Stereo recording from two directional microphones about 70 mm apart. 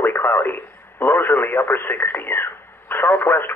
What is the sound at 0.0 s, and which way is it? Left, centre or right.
Speech, left.